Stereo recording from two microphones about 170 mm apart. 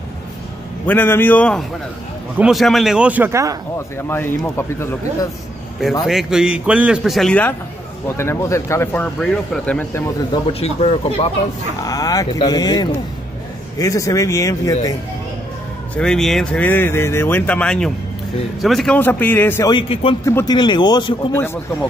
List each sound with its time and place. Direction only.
0.8 s a man's voice: 10° left (ahead or behind); by 3.5 s 15° right (ahead or behind)
4.0 s speech: 15° left (ahead or behind)
6.0 s a man's voice: 5° right (ahead or behind)
10.4 s speech: 35° left (ahead or behind)
11.8 s speech: 20° left (ahead or behind)
16.0 s speech: 5° left (ahead or behind)
19.7 s speech: 30° left (ahead or behind)
20.2 s speech: 20° left (ahead or behind)